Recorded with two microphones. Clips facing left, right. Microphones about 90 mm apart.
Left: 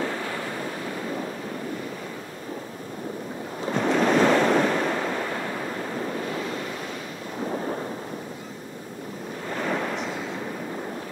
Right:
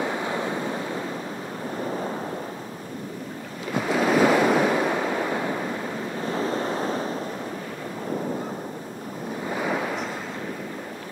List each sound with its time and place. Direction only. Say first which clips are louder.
0.0 s waves: right 3 dB; 20° right (ahead or behind)
3.7 s waves: even; 5° right (ahead or behind)
6.3 s waves: right 5 dB; 35° right (ahead or behind)
9.5 s waves: even; 5° right (ahead or behind)